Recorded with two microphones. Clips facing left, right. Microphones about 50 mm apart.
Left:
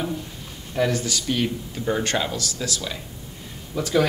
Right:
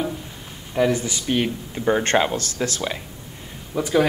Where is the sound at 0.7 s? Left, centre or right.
Centre; by 3.0 s right.